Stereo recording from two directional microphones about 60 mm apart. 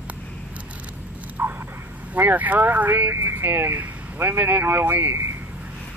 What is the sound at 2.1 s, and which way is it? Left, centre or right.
Speech, right.